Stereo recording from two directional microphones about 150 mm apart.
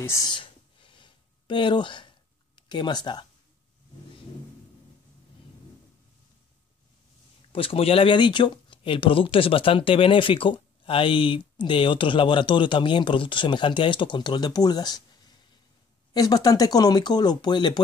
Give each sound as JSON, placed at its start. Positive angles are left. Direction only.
{"t": 0.0, "sound": "a sound", "side_deg": 25}
{"t": 2.5, "sound": "speech", "side_deg": 30}
{"t": 7.5, "sound": "speech", "side_deg": 40}
{"t": 16.1, "sound": "speech", "side_deg": 25}